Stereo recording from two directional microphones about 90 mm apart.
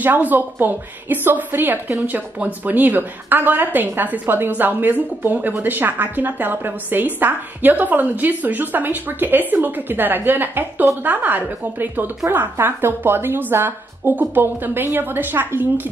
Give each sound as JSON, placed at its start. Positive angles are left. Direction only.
{"t": 0.0, "sound": "a woman's voice", "side_deg": -20}